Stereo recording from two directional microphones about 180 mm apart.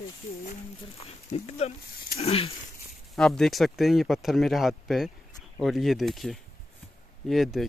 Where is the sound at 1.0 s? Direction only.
35° left (ahead or behind).